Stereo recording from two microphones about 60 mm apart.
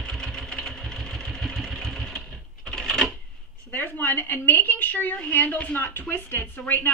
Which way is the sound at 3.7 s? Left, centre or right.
Left.